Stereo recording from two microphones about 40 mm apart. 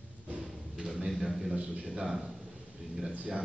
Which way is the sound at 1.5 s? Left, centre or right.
Right.